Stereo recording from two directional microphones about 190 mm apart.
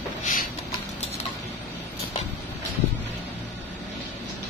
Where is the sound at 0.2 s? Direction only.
45° left (ahead or behind).